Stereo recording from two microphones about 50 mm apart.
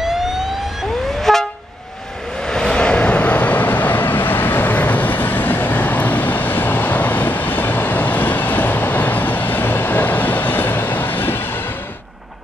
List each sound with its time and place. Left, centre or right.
0.0 s emergency vehicle: centre
1.2 s vehicle: centre; by 11.6 s left